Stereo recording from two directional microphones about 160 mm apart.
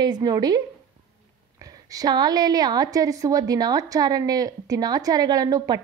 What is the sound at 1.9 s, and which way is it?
A woman's voice, 25° right (ahead or behind).